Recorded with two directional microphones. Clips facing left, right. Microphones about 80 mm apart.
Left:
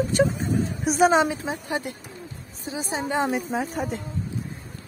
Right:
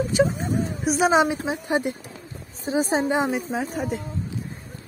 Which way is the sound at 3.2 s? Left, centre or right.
Centre.